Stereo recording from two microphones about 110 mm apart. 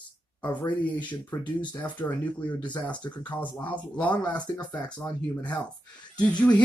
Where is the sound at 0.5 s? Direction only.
45° left (ahead or behind).